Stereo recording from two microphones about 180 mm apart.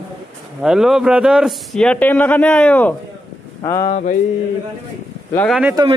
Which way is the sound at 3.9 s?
45° left (ahead or behind).